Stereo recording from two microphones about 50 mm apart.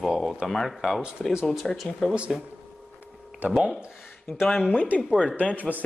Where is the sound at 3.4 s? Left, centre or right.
Right.